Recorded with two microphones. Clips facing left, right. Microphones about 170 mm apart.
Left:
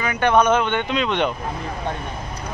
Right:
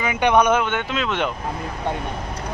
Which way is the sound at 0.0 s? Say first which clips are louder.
Even; 15° right (ahead or behind).